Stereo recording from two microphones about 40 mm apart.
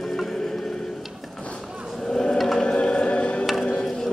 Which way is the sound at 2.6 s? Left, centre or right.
Left.